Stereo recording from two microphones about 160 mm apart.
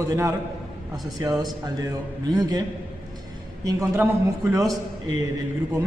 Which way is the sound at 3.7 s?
20° right (ahead or behind).